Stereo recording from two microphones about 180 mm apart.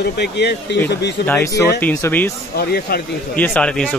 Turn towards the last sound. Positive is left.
turn(degrees=5)  # may be behind; listen again after turning